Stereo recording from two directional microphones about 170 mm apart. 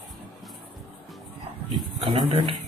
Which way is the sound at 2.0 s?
35° right (ahead or behind).